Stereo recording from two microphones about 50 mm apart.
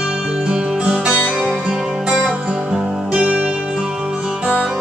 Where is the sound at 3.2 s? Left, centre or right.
Right.